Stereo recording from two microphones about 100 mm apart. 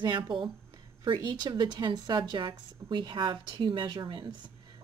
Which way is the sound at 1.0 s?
50° right (ahead or behind).